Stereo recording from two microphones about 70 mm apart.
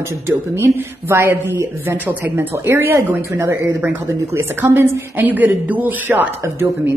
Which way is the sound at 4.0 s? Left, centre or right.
Right.